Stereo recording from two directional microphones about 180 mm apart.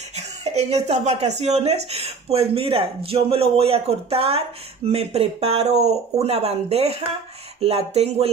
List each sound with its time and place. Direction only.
0.1 s speech: 35° right (ahead or behind)